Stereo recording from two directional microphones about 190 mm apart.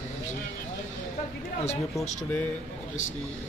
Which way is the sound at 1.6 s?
35° left (ahead or behind).